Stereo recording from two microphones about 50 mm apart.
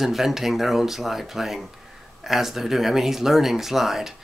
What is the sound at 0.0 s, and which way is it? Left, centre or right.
Speech, centre.